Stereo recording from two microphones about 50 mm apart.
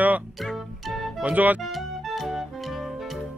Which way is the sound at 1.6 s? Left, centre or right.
Centre.